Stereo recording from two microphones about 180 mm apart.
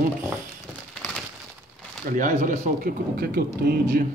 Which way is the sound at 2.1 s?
45° right (ahead or behind).